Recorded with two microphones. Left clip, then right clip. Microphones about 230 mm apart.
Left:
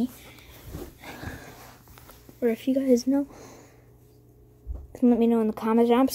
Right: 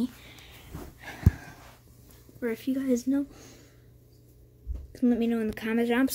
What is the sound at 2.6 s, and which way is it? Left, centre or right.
Speech, centre.